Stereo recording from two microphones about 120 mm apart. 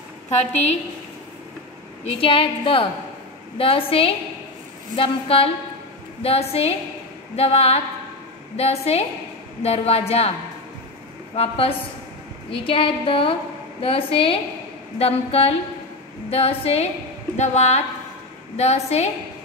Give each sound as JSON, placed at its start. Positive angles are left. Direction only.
{"t": 0.4, "sound": "a woman's voice", "side_deg": 65}
{"t": 2.0, "sound": "a woman's voice", "side_deg": 50}
{"t": 11.3, "sound": "a woman's voice", "side_deg": 55}